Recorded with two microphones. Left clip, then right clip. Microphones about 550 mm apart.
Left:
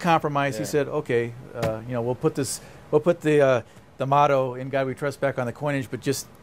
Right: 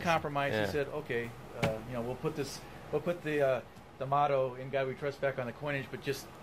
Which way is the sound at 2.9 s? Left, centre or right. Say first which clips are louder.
Left 13 dB; left.